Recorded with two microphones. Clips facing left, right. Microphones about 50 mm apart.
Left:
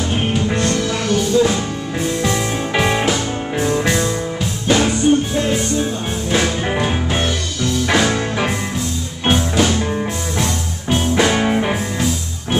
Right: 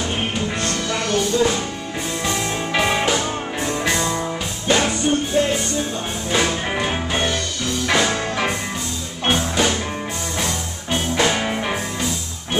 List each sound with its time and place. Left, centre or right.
0.5 s music: centre